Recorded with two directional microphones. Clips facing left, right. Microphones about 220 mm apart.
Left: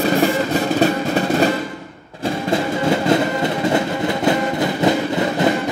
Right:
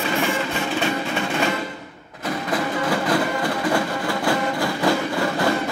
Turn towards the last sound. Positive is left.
turn(degrees=20)  # may be behind; listen again after turning